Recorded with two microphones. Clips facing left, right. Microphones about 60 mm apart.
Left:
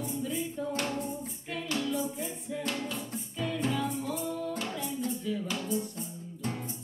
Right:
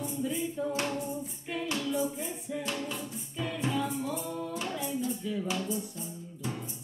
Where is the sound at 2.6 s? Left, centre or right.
Centre.